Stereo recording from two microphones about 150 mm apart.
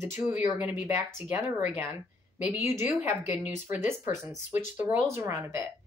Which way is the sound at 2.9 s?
15° right (ahead or behind).